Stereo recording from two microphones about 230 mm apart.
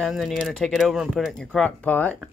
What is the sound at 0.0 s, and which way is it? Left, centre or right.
Speech, centre.